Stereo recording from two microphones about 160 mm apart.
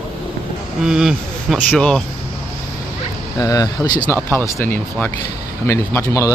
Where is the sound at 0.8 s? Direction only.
5° right (ahead or behind).